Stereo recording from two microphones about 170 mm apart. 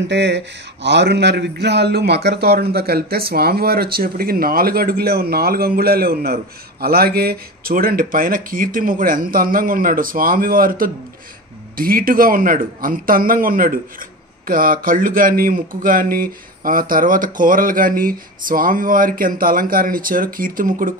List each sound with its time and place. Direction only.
0.1 s a man's voice: 90° right; by 20.9 s 55° right (ahead or behind)